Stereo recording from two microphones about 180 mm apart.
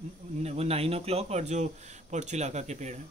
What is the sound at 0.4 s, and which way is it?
Speech, 35° right (ahead or behind).